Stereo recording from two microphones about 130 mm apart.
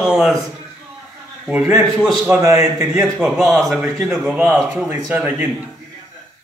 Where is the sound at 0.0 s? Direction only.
5° right (ahead or behind).